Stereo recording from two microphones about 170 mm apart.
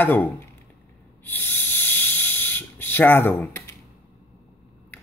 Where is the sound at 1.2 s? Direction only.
10° left (ahead or behind).